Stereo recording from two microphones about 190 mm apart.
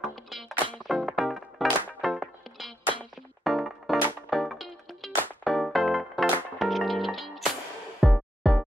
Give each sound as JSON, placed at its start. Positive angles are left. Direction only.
{"t": 0.0, "sound": "music", "side_deg": 0}